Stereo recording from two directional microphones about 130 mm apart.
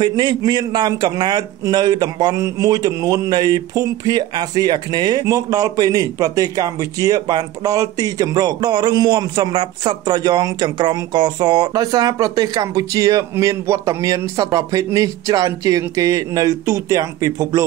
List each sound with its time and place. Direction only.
0.0 s a man's voice: 35° right (ahead or behind)